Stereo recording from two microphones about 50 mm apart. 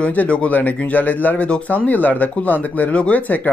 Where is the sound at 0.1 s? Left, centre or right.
Left.